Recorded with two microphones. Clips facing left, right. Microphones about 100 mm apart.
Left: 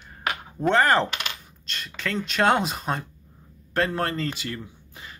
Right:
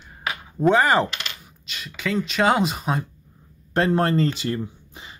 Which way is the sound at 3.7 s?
25° right (ahead or behind).